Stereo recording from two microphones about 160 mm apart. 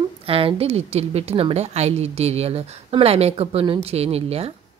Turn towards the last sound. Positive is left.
turn(degrees=-40)  # may be behind; listen again after turning